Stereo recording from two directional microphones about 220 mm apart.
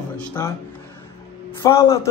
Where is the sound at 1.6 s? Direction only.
15° left (ahead or behind).